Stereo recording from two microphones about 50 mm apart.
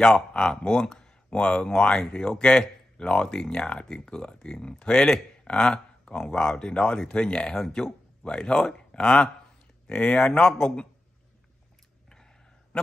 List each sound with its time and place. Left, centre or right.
0.0 s speech: centre
9.8 s speech: left